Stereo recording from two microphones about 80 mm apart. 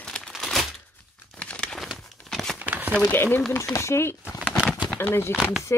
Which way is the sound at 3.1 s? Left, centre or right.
Left.